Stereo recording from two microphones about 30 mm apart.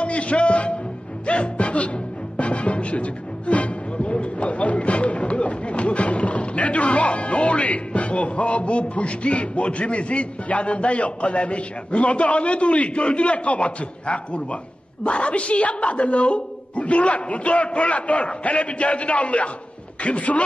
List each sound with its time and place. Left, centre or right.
0.0 s music: left
4.1 s a sound: left
15.0 s a woman's voice: left